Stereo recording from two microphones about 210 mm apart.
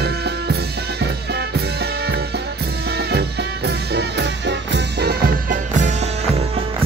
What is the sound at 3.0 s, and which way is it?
Music, 50° right (ahead or behind).